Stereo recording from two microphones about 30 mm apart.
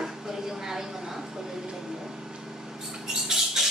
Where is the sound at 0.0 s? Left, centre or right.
Centre.